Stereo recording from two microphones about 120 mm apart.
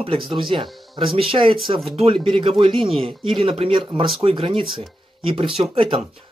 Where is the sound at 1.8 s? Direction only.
Centre (ahead or behind).